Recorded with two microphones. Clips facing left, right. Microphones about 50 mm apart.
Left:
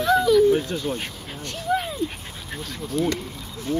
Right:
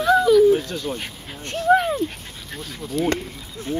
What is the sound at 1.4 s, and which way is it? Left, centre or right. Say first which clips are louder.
Speech: right 8 dB; right.